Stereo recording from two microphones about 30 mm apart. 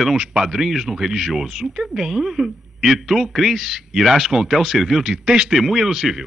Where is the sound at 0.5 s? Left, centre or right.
Centre.